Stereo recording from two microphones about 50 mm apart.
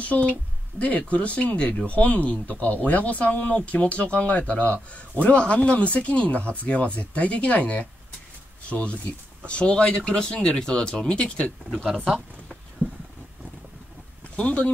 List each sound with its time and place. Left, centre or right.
0.0 s speech: left
12.8 s a sound: right
14.3 s speech: left